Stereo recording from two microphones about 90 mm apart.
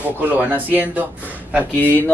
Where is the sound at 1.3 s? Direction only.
20° right (ahead or behind).